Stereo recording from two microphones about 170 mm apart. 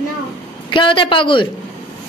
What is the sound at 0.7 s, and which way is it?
Speech, 30° left (ahead or behind).